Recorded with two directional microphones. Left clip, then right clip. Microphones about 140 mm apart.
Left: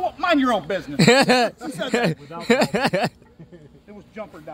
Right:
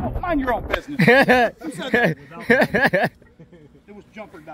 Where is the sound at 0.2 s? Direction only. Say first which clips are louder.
Left 2 dB; 30° left (ahead or behind).